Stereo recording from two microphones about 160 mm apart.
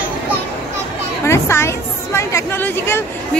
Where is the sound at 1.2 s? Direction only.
15° left (ahead or behind).